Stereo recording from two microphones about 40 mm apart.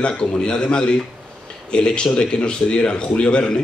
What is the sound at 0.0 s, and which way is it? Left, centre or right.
Speech, left.